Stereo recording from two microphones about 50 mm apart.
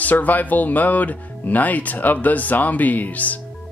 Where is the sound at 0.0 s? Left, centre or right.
Left.